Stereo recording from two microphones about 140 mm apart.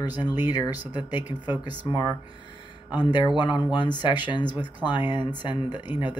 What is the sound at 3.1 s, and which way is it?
Speech, 35° left (ahead or behind).